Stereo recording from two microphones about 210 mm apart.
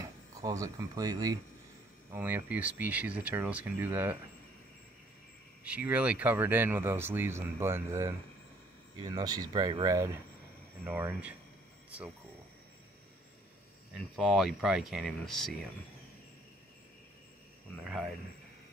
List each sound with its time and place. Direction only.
0.0 s speech: 15° right (ahead or behind)
5.6 s speech: 5° right (ahead or behind)
13.9 s speech: centre (ahead or behind)